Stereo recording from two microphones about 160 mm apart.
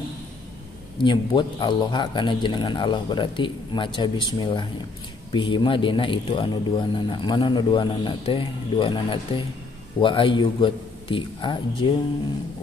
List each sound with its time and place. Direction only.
1.0 s a man's voice: 30° left (ahead or behind)